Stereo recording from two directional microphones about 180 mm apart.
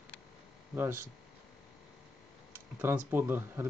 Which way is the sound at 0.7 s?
15° right (ahead or behind).